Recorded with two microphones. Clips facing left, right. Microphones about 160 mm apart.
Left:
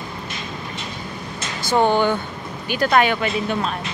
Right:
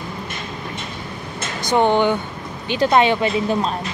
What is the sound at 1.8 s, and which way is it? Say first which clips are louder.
Speech: right 1 dB; 20° right (ahead or behind).